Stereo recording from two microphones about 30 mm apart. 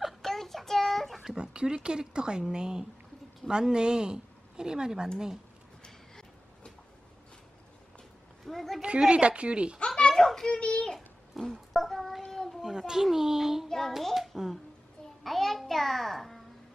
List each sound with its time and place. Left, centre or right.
0.2 s child singing: centre
1.2 s speech: right
8.5 s a woman's voice: centre
9.1 s a woman's voice: right
9.8 s a sound: left
10.5 s a child's voice: left
11.0 s a sound: centre
12.2 s child singing: centre
12.6 s a sound: centre
13.0 s speech: centre
13.7 s child singing: centre
14.1 s music: centre
15.2 s child singing: centre
15.6 s music: centre